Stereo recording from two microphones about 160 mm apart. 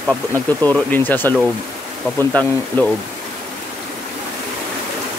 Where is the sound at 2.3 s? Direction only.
5° left (ahead or behind).